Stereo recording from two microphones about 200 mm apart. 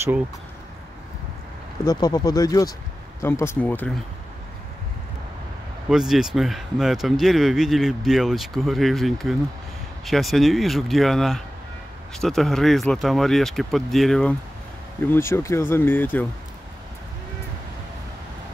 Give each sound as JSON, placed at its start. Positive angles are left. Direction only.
{"t": 1.9, "sound": "speech", "side_deg": 20}
{"t": 5.9, "sound": "speech", "side_deg": 0}
{"t": 15.0, "sound": "speech", "side_deg": 10}